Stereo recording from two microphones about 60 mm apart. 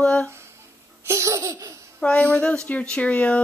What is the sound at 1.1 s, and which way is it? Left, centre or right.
Laughter, right.